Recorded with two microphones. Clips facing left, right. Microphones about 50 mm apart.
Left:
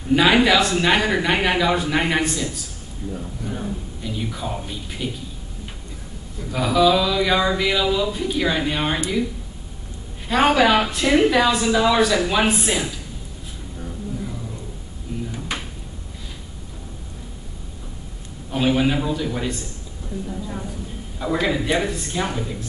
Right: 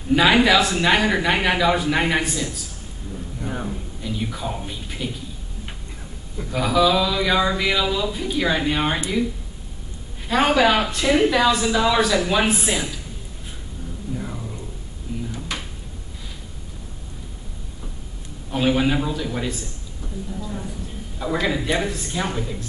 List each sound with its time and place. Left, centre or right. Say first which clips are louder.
0.1 s speech: even; centre
3.4 s speech: right 1 dB; right
4.0 s speech: right 1 dB; centre
6.5 s speech: left 1 dB; centre
10.2 s speech: left 1 dB; centre
14.1 s a sound: right 3 dB; right
15.3 s drawer open or close: left 1 dB; centre
18.5 s speech: even; centre
21.2 s speech: left 1 dB; centre